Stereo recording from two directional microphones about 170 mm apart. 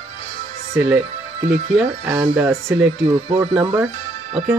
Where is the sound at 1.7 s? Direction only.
10° right (ahead or behind).